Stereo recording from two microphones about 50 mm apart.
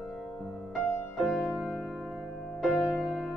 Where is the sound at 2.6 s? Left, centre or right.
Centre.